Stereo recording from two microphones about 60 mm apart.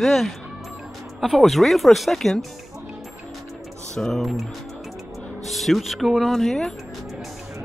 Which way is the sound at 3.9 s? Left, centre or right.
Centre.